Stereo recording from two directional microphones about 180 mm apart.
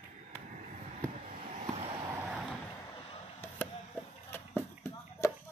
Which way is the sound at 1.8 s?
25° right (ahead or behind).